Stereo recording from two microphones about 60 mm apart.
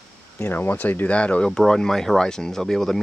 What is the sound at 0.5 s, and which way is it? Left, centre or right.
Speech, left.